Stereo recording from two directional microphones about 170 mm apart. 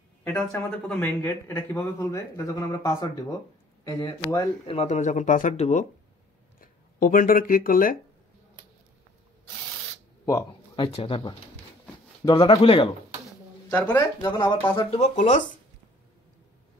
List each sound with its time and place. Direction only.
0.2 s a sound: 5° left (ahead or behind)
0.7 s speech: 10° left (ahead or behind)
4.6 s speech: 40° left (ahead or behind)
6.6 s speech: 55° left (ahead or behind)
10.2 s a sound: 20° left (ahead or behind)
10.9 s speech: 30° left (ahead or behind)
13.7 s speech: 10° left (ahead or behind)
14.2 s speech: 25° left (ahead or behind)
14.9 s speech: 45° left (ahead or behind)